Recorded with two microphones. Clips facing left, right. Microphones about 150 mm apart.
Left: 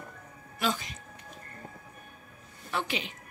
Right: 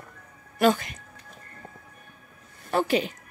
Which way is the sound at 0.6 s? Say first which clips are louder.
Right 10 dB; 55° right (ahead or behind).